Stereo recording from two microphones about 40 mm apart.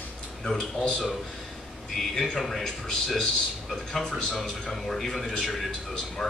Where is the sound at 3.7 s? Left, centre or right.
Centre.